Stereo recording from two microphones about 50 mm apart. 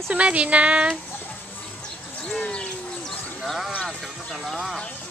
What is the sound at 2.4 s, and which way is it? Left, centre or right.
Bird, left.